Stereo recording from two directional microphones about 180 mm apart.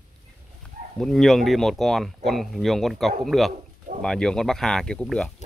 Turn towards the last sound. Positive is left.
turn(degrees=5)  # may be behind; listen again after turning